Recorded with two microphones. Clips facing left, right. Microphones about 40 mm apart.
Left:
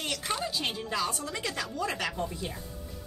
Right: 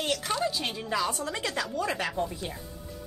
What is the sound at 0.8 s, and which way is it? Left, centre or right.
Speech, right.